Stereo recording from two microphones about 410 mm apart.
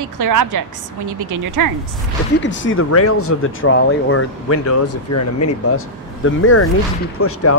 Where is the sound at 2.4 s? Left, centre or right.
Left.